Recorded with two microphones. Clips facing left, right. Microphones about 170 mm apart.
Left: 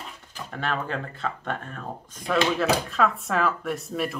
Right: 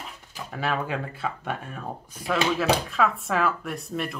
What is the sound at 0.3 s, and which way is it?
Speech, 5° right (ahead or behind).